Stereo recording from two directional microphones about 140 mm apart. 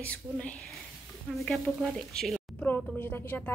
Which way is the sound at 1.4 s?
Centre (ahead or behind).